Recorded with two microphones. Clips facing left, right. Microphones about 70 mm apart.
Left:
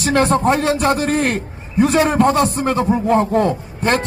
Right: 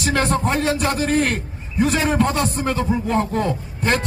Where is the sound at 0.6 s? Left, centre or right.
Left.